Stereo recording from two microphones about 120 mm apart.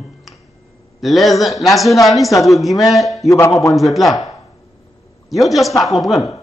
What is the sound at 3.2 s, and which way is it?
Speech, 25° left (ahead or behind).